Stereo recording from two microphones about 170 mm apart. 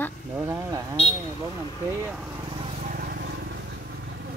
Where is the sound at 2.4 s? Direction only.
30° right (ahead or behind).